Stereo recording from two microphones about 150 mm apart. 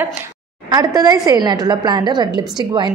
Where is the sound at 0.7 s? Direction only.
25° right (ahead or behind).